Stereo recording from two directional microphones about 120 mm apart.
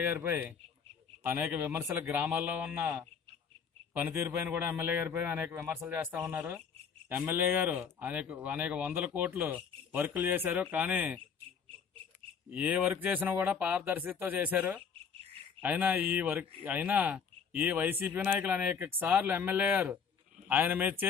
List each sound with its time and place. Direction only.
0.0 s speech: 20° right (ahead or behind)
11.7 s a sound: 50° right (ahead or behind)
12.4 s speech: 15° right (ahead or behind)